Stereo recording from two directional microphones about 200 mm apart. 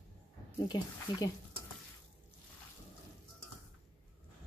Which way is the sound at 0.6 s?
20° left (ahead or behind).